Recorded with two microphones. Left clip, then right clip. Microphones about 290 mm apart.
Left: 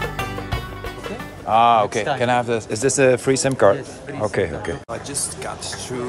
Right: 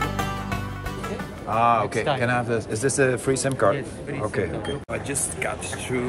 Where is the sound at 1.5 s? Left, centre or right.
Left.